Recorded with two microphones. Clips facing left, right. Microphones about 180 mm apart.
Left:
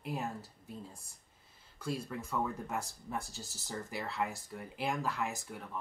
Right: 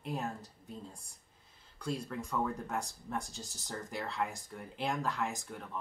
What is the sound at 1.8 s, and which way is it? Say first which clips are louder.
Speech: right 1 dB; 5° left (ahead or behind).